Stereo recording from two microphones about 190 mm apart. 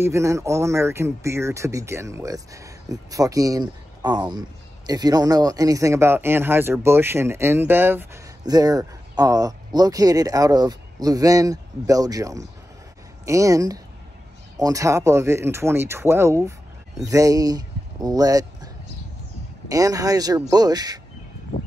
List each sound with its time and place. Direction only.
0.0 s speech: 15° right (ahead or behind)
19.7 s speech: 20° right (ahead or behind)